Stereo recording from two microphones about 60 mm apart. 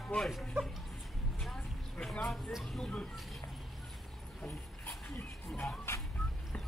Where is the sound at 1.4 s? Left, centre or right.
Centre.